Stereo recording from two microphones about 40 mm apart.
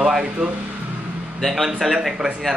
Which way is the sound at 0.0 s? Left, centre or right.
Centre.